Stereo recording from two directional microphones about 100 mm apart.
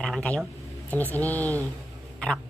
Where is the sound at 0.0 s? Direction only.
10° left (ahead or behind).